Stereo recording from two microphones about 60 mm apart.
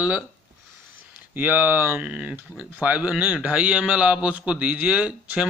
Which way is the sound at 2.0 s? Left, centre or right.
Centre.